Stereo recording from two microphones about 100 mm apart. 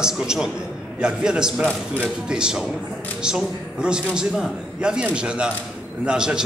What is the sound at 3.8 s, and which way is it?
A man's voice, 10° right (ahead or behind).